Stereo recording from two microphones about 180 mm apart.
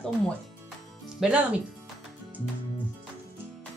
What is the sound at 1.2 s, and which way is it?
Speech, 5° right (ahead or behind).